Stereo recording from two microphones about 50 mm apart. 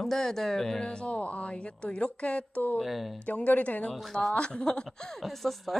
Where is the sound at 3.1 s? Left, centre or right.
Left.